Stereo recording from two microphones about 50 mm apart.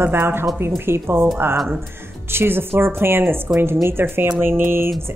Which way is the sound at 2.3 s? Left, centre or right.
Right.